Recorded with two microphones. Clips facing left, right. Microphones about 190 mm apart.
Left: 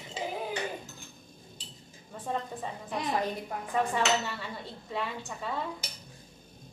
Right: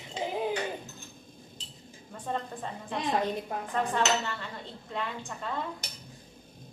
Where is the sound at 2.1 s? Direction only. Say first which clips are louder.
Even; 5° left (ahead or behind).